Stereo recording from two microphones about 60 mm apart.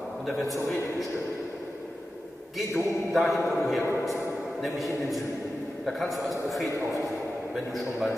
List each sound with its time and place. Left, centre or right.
0.3 s a man's voice: centre
2.5 s a man's voice: centre